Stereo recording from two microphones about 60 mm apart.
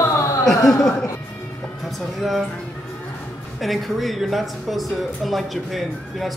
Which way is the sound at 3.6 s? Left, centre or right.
Centre.